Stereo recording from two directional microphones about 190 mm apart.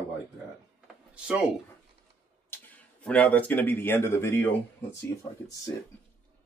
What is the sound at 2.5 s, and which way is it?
Speech, 10° left (ahead or behind).